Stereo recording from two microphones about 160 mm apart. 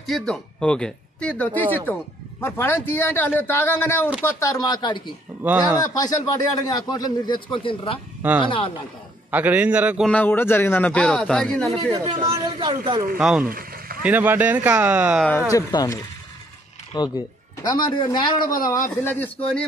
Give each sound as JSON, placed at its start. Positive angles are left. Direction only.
{"t": 0.0, "sound": "speech", "side_deg": 0}
{"t": 5.4, "sound": "speech", "side_deg": -10}
{"t": 6.6, "sound": "speech", "side_deg": 25}
{"t": 9.3, "sound": "speech", "side_deg": -10}
{"t": 10.0, "sound": "speech", "side_deg": 10}
{"t": 11.7, "sound": "speech", "side_deg": -40}
{"t": 12.3, "sound": "speech", "side_deg": -30}
{"t": 13.2, "sound": "speech", "side_deg": -5}
{"t": 13.5, "sound": "a sound", "side_deg": -65}
{"t": 14.0, "sound": "speech", "side_deg": -10}
{"t": 15.5, "sound": "speech", "side_deg": 20}